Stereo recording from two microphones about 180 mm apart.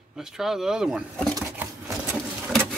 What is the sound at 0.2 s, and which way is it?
Speech, centre (ahead or behind).